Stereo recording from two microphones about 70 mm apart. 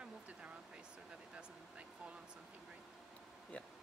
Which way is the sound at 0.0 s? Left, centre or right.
Centre.